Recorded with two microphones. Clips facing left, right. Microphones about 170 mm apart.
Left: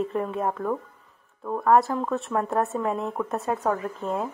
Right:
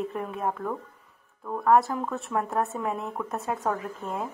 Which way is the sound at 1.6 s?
Centre (ahead or behind).